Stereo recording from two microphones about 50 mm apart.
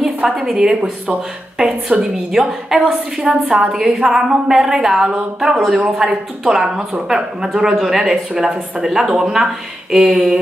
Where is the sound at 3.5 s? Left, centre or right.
Centre.